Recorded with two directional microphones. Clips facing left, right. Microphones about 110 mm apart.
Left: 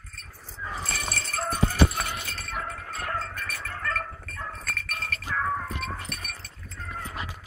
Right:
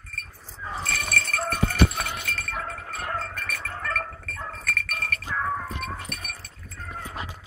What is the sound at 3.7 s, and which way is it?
Chink, 15° right (ahead or behind).